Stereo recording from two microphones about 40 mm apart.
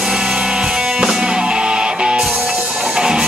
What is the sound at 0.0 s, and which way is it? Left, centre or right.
Music, centre.